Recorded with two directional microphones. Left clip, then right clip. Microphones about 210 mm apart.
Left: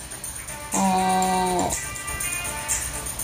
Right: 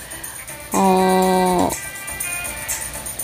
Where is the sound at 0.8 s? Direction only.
30° right (ahead or behind).